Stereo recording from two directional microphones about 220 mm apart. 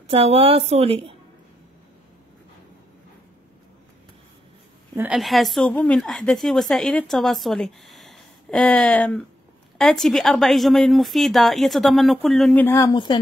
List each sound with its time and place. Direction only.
0.1 s a woman's voice: 25° right (ahead or behind)
4.9 s a woman's voice: 5° right (ahead or behind); by 13.2 s 20° left (ahead or behind)